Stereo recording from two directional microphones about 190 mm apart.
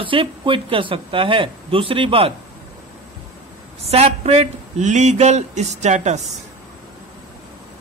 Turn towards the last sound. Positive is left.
turn(degrees=-35)  # may be behind; listen again after turning